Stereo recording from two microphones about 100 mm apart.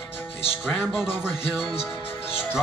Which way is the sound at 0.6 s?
5° right (ahead or behind).